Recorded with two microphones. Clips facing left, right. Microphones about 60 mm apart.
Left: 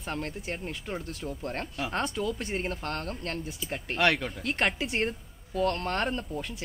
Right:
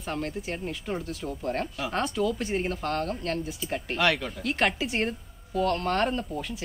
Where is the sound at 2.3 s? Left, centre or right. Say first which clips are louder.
Right 4 dB; centre.